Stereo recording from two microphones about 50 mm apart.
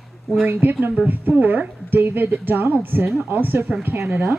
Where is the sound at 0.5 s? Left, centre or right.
Right.